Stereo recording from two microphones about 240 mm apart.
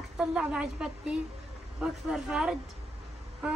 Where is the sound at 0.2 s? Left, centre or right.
Centre.